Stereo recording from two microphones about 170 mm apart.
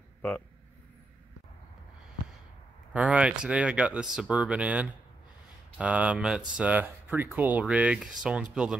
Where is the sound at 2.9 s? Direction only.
5° right (ahead or behind).